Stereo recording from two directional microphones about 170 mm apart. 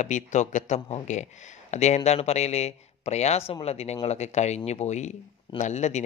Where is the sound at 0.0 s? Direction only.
45° left (ahead or behind).